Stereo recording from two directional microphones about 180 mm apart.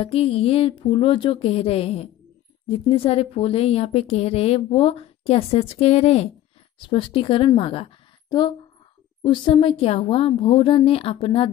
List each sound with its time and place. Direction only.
0.0 s a woman's voice: 35° left (ahead or behind)